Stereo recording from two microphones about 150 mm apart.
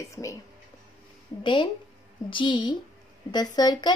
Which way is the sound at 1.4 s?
30° left (ahead or behind).